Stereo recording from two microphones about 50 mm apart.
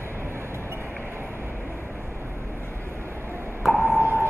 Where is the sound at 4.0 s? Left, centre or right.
Right.